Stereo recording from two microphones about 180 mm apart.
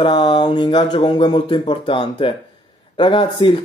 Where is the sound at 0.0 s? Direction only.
25° left (ahead or behind).